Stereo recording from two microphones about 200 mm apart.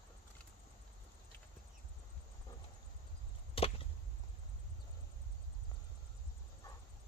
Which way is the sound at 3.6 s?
25° left (ahead or behind).